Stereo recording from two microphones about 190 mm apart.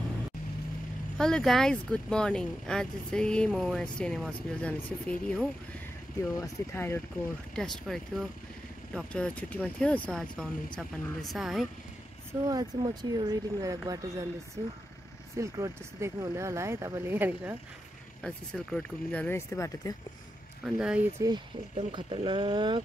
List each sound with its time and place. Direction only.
1.1 s speech: centre (ahead or behind)
7.5 s speech: 5° left (ahead or behind)
12.3 s speech: 20° right (ahead or behind)
18.2 s speech: 5° left (ahead or behind)
20.6 s speech: 5° right (ahead or behind)
21.2 s speech: 15° right (ahead or behind)